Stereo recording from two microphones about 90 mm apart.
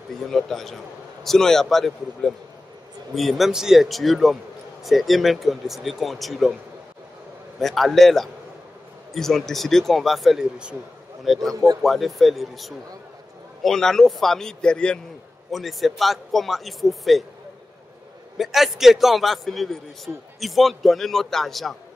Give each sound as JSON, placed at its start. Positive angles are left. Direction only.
{"t": 0.1, "sound": "speech", "side_deg": 5}
{"t": 7.6, "sound": "speech", "side_deg": 0}
{"t": 11.5, "sound": "speech", "side_deg": -45}
{"t": 11.8, "sound": "speech", "side_deg": 0}
{"t": 18.4, "sound": "speech", "side_deg": 0}